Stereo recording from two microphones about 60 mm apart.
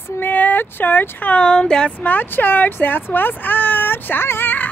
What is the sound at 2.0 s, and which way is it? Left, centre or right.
Speech, left.